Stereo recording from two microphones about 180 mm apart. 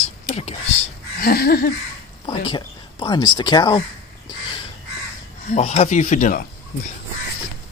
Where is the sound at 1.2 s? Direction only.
55° left (ahead or behind).